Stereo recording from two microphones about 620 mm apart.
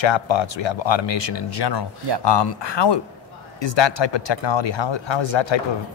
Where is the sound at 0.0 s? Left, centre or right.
Left.